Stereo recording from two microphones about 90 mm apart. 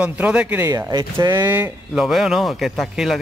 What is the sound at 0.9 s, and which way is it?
Speech, 45° right (ahead or behind).